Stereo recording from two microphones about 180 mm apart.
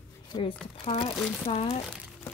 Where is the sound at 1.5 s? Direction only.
35° left (ahead or behind).